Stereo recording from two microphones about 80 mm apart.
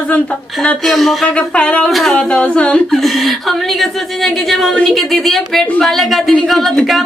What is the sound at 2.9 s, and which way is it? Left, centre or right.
Speech, centre.